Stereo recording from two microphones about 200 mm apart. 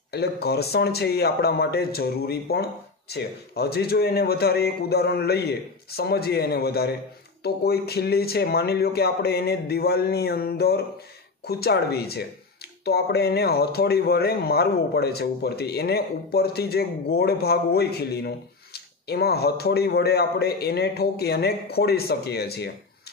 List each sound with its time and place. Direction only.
0.1 s speech: 55° left (ahead or behind)